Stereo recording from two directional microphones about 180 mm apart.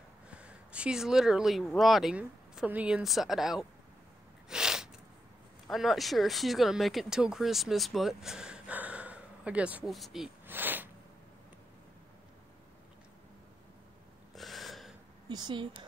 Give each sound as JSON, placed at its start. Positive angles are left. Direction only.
{"t": 0.3, "sound": "speech", "side_deg": -5}
{"t": 4.5, "sound": "sneeze", "side_deg": -5}
{"t": 5.7, "sound": "speech", "side_deg": 0}
{"t": 14.3, "sound": "gasp", "side_deg": 0}
{"t": 15.2, "sound": "speech", "side_deg": -25}